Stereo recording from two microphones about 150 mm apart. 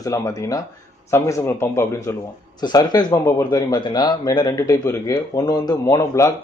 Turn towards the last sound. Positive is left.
turn(degrees=20)  # may be behind; listen again after turning